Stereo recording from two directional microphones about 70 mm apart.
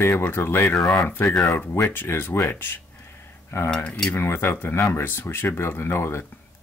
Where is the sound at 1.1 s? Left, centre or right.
Left.